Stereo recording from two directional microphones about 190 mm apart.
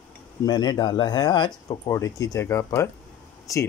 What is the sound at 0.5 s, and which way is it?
Speech, 20° left (ahead or behind).